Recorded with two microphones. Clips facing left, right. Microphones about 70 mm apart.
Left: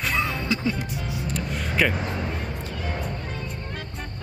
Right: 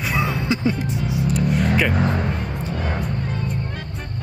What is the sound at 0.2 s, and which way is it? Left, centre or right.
Music, right.